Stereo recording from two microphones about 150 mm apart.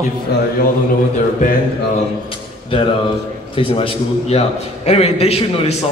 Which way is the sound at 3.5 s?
35° left (ahead or behind).